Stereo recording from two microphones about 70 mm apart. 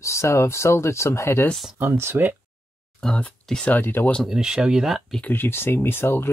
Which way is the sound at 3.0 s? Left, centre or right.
Centre.